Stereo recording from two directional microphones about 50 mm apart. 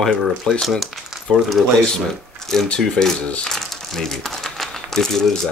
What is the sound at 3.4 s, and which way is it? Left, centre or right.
Crumpling, centre.